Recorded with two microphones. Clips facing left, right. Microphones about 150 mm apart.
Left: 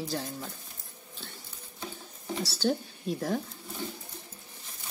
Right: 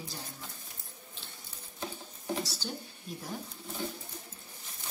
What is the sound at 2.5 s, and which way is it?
Speech, 85° left.